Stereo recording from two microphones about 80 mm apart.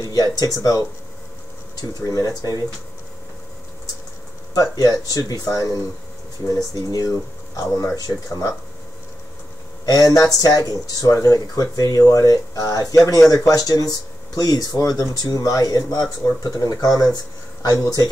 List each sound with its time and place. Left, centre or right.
0.0 s a sound: left
0.4 s speech: left
4.6 s speech: left
9.8 s speech: left